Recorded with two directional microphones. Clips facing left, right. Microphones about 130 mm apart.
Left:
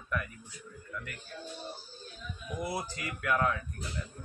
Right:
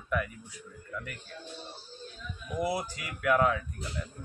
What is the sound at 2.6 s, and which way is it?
Speech, 10° right (ahead or behind).